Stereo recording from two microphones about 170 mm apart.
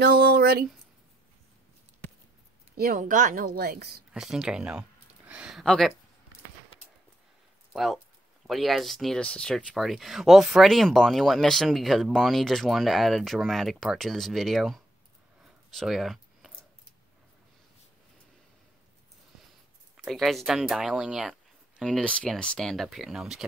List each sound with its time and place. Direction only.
0.0 s a sound: 65° right (ahead or behind)
2.8 s a woman's voice: 55° right (ahead or behind); by 4.0 s 70° right (ahead or behind)
4.1 s speech: 5° right (ahead or behind)
7.7 s speech: centre (ahead or behind)
15.4 s a sound: centre (ahead or behind)
20.1 s speech: centre (ahead or behind)